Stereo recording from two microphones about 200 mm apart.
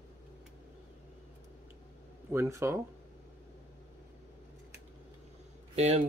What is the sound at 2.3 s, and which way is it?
Speech, 15° right (ahead or behind).